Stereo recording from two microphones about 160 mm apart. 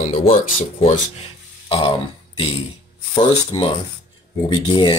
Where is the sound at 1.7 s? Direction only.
35° left (ahead or behind).